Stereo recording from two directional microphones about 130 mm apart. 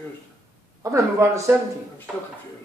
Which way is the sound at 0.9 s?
25° right (ahead or behind).